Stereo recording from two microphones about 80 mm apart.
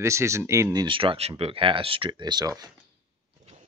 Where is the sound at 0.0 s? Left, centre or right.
Right.